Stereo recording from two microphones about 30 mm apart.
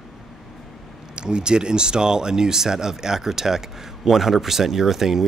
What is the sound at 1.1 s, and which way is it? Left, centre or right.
Speech, right.